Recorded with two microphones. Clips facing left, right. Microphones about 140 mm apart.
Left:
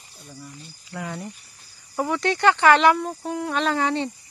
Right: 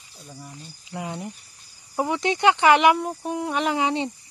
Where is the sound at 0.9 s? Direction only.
20° right (ahead or behind).